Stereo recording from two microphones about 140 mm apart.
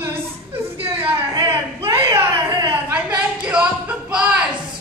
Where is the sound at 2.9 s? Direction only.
5° right (ahead or behind).